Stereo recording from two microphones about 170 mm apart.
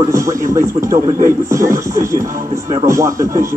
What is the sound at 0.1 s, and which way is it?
Speech, 20° right (ahead or behind).